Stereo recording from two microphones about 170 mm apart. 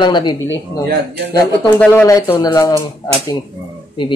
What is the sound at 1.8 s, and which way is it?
Speech, 15° left (ahead or behind).